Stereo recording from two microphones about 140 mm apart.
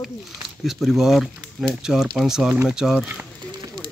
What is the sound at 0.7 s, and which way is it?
Speech, centre (ahead or behind).